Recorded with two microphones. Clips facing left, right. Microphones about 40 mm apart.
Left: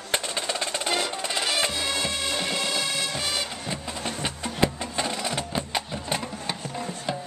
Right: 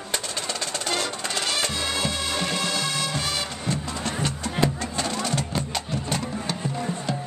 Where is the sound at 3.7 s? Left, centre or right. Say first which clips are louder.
Right 3 dB; centre.